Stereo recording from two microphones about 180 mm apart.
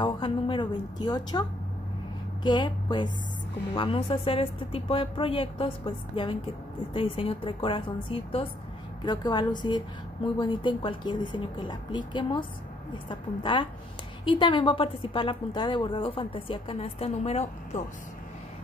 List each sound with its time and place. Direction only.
0.0 s a woman's voice: 30° left (ahead or behind)
2.4 s a woman's voice: 25° left (ahead or behind)